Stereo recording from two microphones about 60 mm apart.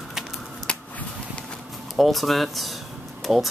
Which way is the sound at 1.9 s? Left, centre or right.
Centre.